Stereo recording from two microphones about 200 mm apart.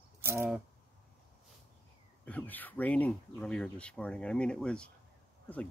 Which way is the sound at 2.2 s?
10° left (ahead or behind).